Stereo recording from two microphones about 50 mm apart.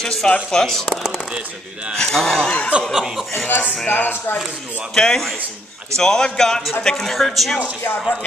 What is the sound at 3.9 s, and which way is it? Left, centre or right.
Speech, left.